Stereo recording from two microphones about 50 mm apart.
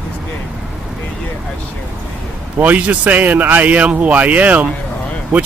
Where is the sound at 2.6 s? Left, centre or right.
Right.